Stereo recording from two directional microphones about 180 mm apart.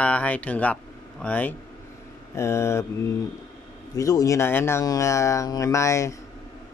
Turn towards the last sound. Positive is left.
turn(degrees=15)  # may be behind; listen again after turning